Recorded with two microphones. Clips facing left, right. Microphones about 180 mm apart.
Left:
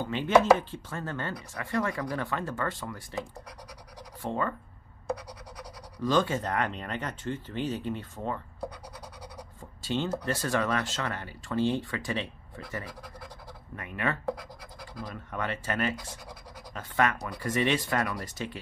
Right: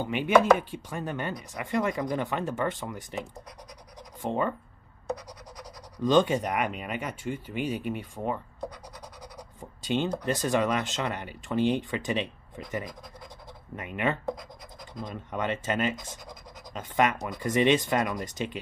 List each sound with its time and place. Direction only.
0.0 s speech: 15° right (ahead or behind)
6.0 s speech: 20° right (ahead or behind)
9.6 s speech: 20° right (ahead or behind)
15.3 s speech: 20° right (ahead or behind)